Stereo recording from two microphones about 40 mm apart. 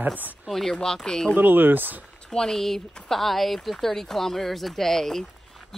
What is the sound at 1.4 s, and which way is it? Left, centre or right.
Speech, right.